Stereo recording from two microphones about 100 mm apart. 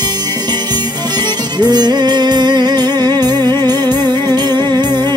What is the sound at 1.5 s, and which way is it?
Music, 45° right (ahead or behind).